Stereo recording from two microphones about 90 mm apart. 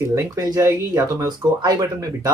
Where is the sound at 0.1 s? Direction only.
40° right (ahead or behind).